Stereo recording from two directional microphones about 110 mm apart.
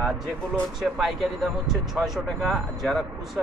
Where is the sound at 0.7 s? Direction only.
Centre (ahead or behind).